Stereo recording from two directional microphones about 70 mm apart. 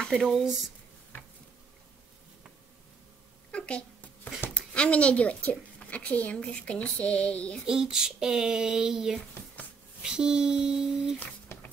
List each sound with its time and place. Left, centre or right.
0.1 s speech: centre
3.5 s a sound: centre
4.7 s a woman's voice: centre
7.6 s child singing: centre